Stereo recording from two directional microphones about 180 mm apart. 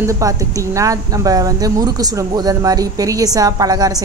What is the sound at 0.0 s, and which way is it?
A woman's voice, 15° right (ahead or behind).